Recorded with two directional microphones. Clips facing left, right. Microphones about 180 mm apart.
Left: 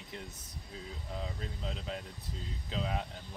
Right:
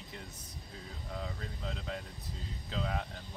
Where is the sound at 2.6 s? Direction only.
20° left (ahead or behind).